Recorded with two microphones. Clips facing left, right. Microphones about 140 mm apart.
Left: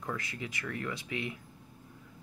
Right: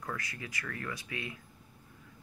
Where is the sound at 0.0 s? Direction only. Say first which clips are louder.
Left 2 dB; 20° left (ahead or behind).